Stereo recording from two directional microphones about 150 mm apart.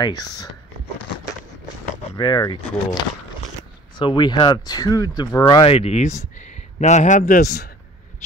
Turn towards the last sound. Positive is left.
turn(degrees=75)  # may be behind; listen again after turning